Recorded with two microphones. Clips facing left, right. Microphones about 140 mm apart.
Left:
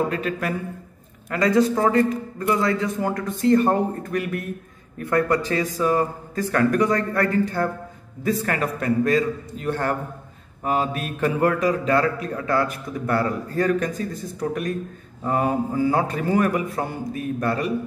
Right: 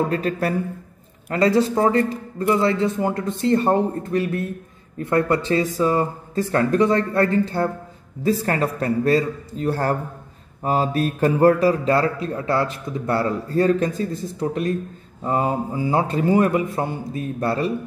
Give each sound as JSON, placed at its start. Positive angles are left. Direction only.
{"t": 0.1, "sound": "a man's voice", "side_deg": -35}